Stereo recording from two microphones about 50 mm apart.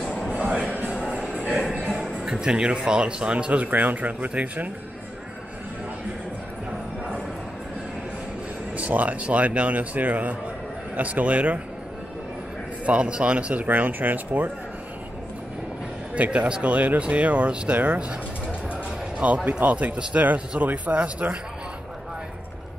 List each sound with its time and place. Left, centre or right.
0.6 s a sound: right
1.6 s music: centre
2.1 s speech: centre
8.7 s speech: right
12.8 s speech: right
13.7 s speech: right
16.2 s speech: right
19.1 s speech: right